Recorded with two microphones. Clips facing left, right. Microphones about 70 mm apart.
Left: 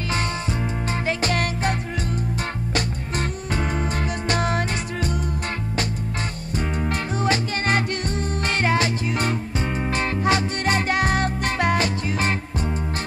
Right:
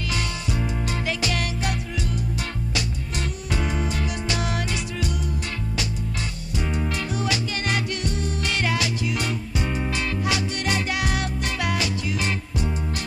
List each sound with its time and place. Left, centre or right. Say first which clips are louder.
1.0 s music: left 5 dB; left
6.6 s music: left 1 dB; left